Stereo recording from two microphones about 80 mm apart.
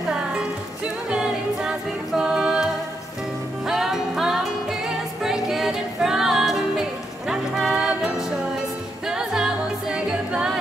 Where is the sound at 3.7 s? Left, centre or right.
Centre.